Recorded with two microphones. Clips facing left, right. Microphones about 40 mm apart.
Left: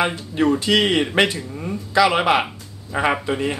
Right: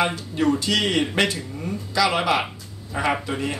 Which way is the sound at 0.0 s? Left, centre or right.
Left.